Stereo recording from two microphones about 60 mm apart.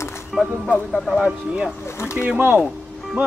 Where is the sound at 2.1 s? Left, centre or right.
Centre.